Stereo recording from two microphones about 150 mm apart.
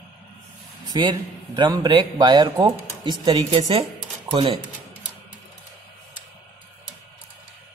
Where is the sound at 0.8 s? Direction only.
30° right (ahead or behind).